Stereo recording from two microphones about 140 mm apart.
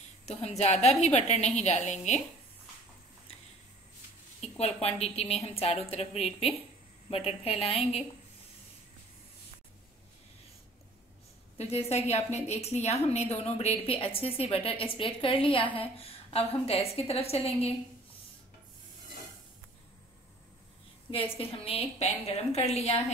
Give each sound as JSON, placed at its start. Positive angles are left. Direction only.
{"t": 0.2, "sound": "a woman's voice", "side_deg": 50}
{"t": 4.4, "sound": "a woman's voice", "side_deg": 50}
{"t": 11.5, "sound": "a woman's voice", "side_deg": 50}
{"t": 21.1, "sound": "a woman's voice", "side_deg": 40}